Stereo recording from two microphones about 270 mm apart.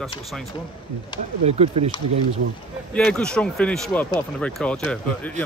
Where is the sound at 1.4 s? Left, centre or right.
Right.